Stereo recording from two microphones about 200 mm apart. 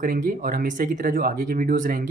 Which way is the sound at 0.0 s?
40° right (ahead or behind).